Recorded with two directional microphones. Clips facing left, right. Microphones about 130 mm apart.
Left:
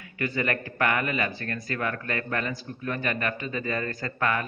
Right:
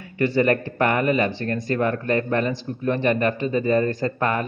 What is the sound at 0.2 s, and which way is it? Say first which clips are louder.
A man's voice: right 9 dB; 30° right (ahead or behind).